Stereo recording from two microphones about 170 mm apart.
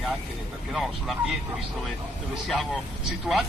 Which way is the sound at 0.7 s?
Centre (ahead or behind).